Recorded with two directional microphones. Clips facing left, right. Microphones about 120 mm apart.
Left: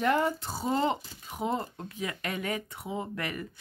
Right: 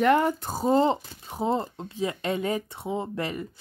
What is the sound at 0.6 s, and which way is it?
Speech, 30° right (ahead or behind).